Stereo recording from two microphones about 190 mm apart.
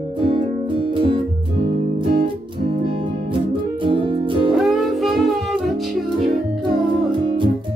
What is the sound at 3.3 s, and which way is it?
Music, 25° right (ahead or behind).